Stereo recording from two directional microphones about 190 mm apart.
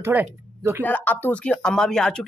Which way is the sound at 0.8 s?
10° left (ahead or behind).